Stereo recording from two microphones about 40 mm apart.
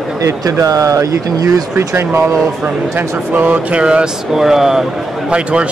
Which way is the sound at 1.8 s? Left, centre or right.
Right.